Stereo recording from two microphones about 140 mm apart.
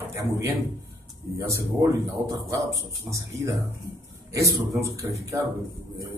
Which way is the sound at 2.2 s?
20° right (ahead or behind).